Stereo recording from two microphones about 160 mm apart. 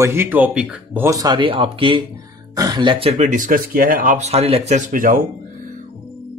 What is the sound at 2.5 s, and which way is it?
Speech, 25° right (ahead or behind).